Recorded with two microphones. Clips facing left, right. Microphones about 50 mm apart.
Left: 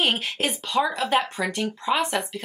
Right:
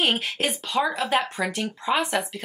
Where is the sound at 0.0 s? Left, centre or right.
Centre.